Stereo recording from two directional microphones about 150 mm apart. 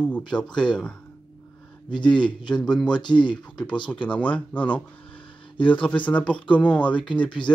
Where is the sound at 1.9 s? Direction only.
30° left (ahead or behind).